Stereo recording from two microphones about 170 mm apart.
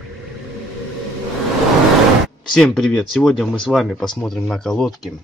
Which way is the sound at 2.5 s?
5° left (ahead or behind).